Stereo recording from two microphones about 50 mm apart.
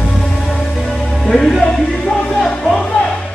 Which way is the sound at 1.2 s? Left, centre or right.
Centre.